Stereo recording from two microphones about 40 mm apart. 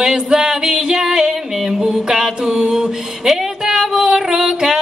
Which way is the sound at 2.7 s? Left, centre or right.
Centre.